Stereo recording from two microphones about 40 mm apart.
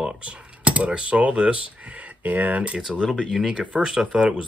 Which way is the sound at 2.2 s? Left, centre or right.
Right.